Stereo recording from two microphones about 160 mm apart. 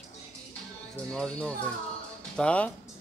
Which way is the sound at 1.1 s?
5° left (ahead or behind).